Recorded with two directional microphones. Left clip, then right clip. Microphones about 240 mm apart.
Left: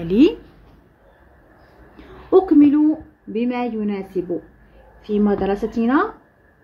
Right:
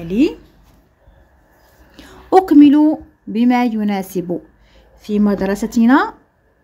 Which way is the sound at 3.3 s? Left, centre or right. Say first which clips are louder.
Right 7 dB; right.